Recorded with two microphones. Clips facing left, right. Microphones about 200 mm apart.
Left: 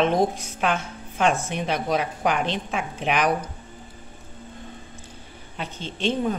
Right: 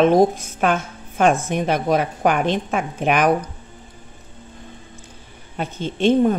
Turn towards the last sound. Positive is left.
turn(degrees=-50)  # may be behind; listen again after turning